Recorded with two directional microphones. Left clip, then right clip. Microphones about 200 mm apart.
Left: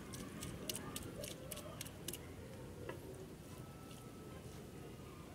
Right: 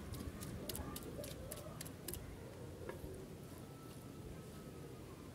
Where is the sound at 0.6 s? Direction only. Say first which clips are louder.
Left 1 dB; centre (ahead or behind).